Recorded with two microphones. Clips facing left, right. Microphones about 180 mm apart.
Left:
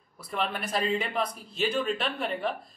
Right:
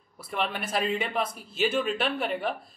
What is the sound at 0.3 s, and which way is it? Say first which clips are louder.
Speech: right 1 dB; 5° right (ahead or behind).